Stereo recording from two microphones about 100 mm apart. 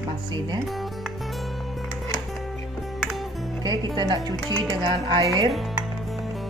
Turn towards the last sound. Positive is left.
turn(degrees=-50)  # may be behind; listen again after turning